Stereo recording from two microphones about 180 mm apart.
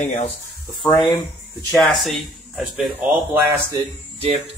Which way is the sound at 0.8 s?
25° left (ahead or behind).